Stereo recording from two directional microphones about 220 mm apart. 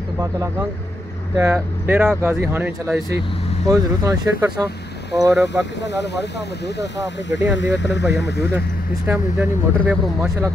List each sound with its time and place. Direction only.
0.2 s speech: 15° right (ahead or behind)
5.9 s speech: 50° left (ahead or behind)
8.5 s speech: 10° right (ahead or behind)